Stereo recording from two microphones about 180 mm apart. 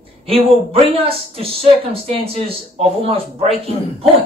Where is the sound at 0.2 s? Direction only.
30° right (ahead or behind).